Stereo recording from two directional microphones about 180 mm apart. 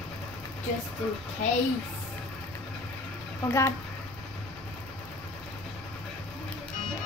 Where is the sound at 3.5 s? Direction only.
15° left (ahead or behind).